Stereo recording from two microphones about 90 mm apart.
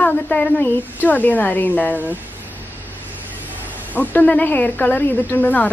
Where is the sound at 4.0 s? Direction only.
15° left (ahead or behind).